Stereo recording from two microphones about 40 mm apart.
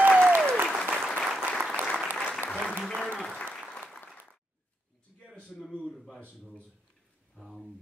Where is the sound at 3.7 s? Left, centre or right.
Centre.